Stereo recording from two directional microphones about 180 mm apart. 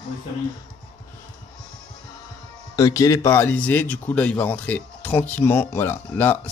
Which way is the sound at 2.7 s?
20° left (ahead or behind).